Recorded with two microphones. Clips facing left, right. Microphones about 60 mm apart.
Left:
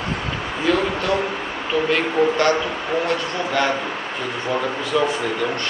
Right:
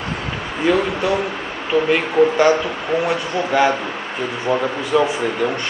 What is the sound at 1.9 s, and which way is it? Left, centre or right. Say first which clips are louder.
Speech: right 3 dB; centre.